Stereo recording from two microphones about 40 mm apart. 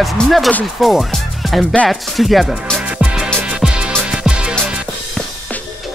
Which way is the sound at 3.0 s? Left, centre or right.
Right.